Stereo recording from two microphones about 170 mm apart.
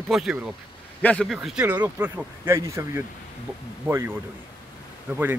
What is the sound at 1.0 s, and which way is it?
Speech, 5° left (ahead or behind).